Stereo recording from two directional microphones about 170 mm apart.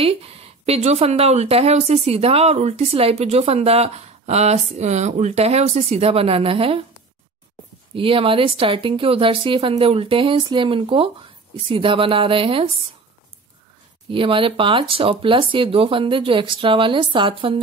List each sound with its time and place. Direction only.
0.0 s speech: 35° right (ahead or behind)
7.9 s speech: 30° right (ahead or behind)
14.0 s speech: 30° right (ahead or behind)